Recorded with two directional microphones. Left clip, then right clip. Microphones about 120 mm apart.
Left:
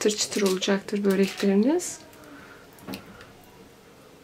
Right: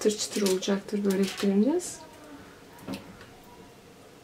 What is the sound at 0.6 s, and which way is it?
Speech, 30° left (ahead or behind).